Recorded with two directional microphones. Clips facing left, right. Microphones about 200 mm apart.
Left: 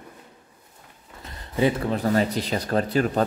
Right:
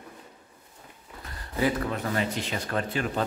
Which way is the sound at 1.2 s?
25° left (ahead or behind).